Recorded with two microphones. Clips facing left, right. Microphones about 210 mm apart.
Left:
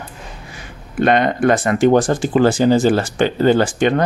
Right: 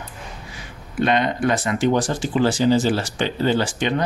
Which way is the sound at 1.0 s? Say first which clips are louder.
Left 5 dB; 55° left (ahead or behind).